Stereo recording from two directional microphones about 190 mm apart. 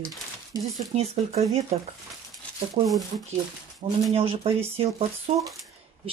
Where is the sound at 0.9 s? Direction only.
35° right (ahead or behind).